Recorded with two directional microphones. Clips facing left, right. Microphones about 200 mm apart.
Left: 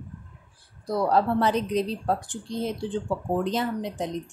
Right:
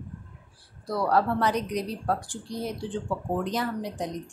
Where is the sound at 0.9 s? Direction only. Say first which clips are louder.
Left 2 dB; 20° left (ahead or behind).